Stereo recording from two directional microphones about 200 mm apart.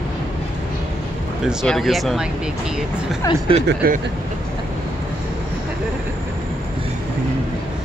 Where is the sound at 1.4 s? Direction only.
Centre (ahead or behind).